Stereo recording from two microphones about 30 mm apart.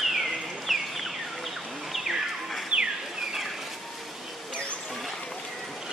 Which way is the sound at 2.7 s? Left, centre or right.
Right.